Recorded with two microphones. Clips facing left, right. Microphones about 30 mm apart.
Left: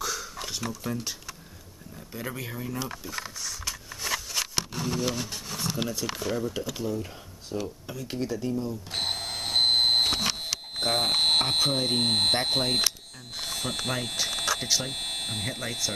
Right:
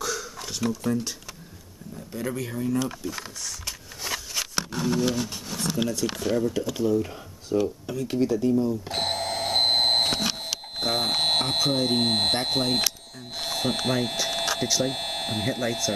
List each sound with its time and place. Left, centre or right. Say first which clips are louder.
0.0 s a sound: right 2 dB; centre
0.5 s speech: right 7 dB; centre
2.1 s speech: right 5 dB; centre
3.6 s a sound: left 2 dB; centre
5.1 s speech: right 4 dB; centre
8.1 s doorbell: right 7 dB; centre
13.4 s speech: right 5 dB; centre
14.1 s a sound: right 2 dB; centre
14.6 s speech: right 3 dB; centre